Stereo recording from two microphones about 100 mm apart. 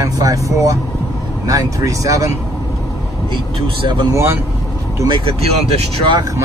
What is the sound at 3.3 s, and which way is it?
Speech, 50° right (ahead or behind).